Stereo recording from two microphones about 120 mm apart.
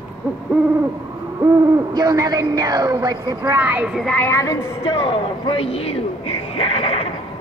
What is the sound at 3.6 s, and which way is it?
Speech, 15° right (ahead or behind).